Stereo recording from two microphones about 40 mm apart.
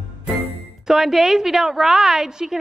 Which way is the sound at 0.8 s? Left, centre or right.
Centre.